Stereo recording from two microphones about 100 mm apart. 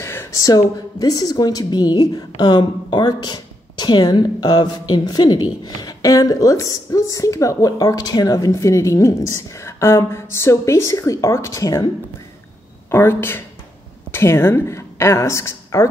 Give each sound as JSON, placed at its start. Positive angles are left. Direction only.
{"t": 0.0, "sound": "a woman's voice", "side_deg": 25}
{"t": 12.9, "sound": "a woman's voice", "side_deg": 20}